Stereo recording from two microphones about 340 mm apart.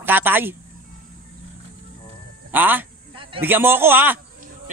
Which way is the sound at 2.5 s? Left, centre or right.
Centre.